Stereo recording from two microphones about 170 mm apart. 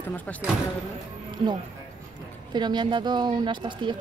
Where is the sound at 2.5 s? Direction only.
25° right (ahead or behind).